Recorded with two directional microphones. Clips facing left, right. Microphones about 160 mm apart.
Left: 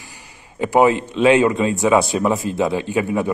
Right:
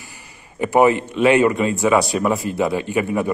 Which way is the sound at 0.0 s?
15° left (ahead or behind).